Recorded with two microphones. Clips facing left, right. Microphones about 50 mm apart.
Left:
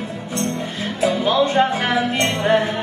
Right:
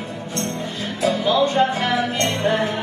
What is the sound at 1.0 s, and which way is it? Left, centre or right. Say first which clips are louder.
Music: left 1 dB; left.